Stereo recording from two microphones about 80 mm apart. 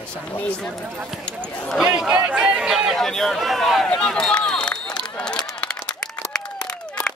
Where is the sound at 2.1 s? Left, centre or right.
Centre.